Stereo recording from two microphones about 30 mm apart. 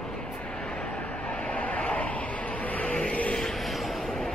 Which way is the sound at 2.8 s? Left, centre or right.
Left.